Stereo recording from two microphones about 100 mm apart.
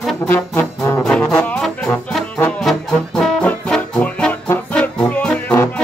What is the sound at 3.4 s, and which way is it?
Music, 15° left (ahead or behind).